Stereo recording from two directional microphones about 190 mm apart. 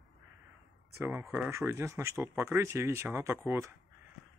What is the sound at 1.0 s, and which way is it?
Speech, 15° right (ahead or behind).